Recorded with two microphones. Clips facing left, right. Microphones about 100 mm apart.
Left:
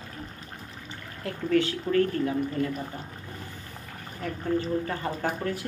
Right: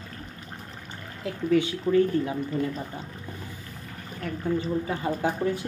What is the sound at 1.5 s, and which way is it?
Speech, 15° right (ahead or behind).